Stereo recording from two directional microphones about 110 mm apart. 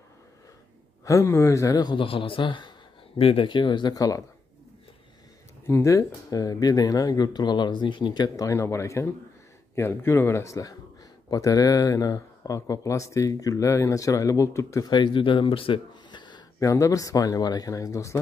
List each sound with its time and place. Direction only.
1.0 s speech: 25° left (ahead or behind); by 2.7 s 45° left (ahead or behind)
3.2 s speech: 65° left (ahead or behind)
3.4 s speech: 45° left (ahead or behind)
5.7 s speech: 25° left (ahead or behind)
14.9 s speech: 45° left (ahead or behind)
16.5 s speech: 30° left (ahead or behind)